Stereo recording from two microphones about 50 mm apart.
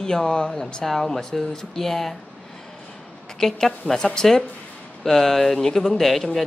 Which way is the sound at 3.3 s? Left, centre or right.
Centre.